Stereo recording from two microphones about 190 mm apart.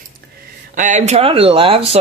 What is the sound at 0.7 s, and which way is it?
Speech, 40° right (ahead or behind).